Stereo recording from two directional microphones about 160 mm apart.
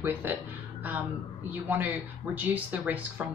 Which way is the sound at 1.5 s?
10° right (ahead or behind).